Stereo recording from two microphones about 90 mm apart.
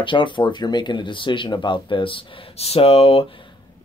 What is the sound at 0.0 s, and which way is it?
Speech, 65° left (ahead or behind).